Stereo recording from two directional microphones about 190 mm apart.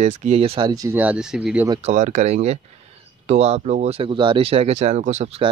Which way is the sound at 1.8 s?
40° right (ahead or behind).